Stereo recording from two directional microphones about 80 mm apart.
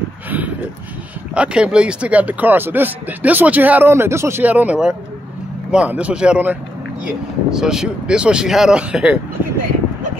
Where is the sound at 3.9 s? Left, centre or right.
Right.